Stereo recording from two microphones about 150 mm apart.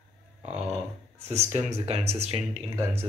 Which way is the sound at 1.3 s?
45° right (ahead or behind).